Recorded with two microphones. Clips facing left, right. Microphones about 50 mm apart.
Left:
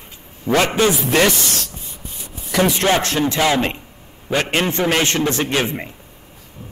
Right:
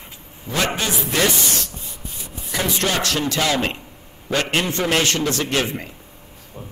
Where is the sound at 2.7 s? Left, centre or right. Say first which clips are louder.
Left 4 dB; left.